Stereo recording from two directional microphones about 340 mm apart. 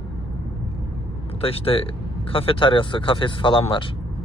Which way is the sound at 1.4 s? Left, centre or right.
Centre.